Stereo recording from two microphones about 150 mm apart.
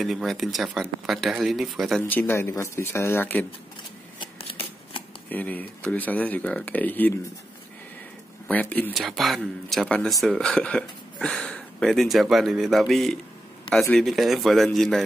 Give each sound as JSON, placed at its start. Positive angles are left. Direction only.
{"t": 0.0, "sound": "speech", "side_deg": 0}
{"t": 2.0, "sound": "speech", "side_deg": 15}
{"t": 4.2, "sound": "shuffling cards", "side_deg": 40}
{"t": 5.3, "sound": "speech", "side_deg": 10}
{"t": 8.5, "sound": "speech", "side_deg": 10}
{"t": 8.9, "sound": "speech", "side_deg": 0}